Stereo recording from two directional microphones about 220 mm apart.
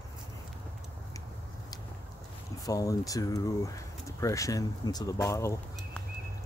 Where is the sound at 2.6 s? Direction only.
15° left (ahead or behind).